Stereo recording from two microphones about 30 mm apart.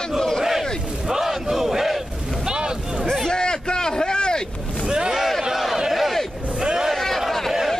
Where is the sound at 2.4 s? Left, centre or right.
Right.